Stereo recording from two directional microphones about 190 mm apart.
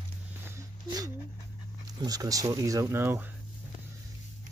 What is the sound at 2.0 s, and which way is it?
Speech, 20° right (ahead or behind).